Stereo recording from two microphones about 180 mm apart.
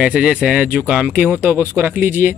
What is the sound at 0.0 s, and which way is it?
Speech, 5° right (ahead or behind).